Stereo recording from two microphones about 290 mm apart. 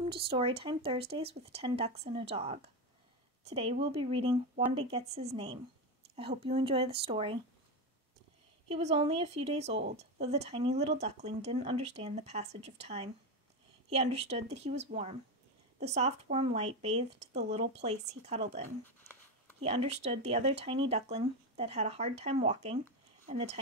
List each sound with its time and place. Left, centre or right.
0.0 s speech: centre
8.6 s speech: right